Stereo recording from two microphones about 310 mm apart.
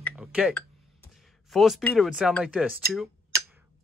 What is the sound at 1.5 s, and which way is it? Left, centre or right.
Speech, centre.